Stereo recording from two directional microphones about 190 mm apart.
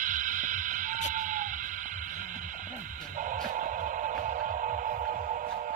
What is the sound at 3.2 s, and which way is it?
Music, 45° right (ahead or behind).